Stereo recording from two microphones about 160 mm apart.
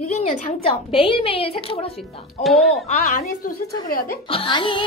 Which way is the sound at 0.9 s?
35° left (ahead or behind).